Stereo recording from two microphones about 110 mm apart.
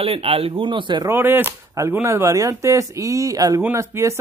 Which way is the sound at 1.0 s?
20° right (ahead or behind).